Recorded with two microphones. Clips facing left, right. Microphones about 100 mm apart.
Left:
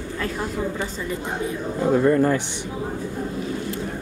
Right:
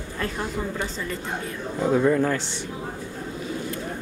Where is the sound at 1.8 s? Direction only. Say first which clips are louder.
Left 2 dB; centre (ahead or behind).